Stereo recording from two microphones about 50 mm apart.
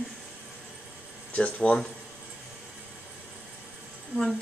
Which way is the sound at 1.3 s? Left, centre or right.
Left.